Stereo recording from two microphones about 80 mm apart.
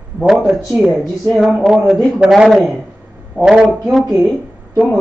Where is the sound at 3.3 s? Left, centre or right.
Centre.